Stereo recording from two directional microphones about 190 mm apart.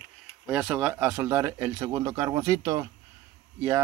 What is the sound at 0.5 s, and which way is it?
Speech, 5° right (ahead or behind).